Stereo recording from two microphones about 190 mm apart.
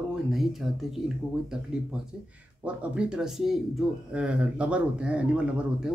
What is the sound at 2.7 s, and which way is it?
Speech, 5° right (ahead or behind).